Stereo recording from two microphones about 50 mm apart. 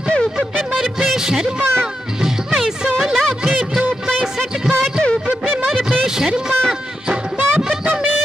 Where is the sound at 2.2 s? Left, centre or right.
Centre.